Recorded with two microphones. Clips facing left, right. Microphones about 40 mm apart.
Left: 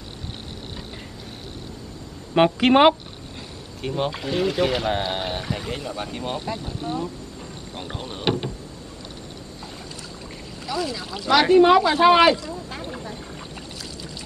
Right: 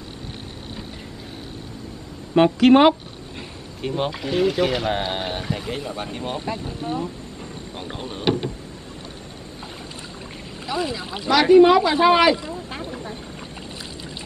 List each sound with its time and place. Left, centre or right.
2.3 s speech: centre
3.8 s speech: centre
6.8 s speech: right
8.2 s speech: centre
10.7 s speech: right
11.2 s speech: centre